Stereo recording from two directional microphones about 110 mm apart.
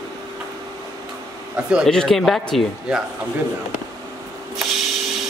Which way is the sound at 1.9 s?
5° left (ahead or behind).